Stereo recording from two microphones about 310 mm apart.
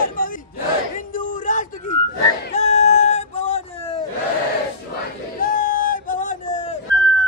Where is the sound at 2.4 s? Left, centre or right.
Left.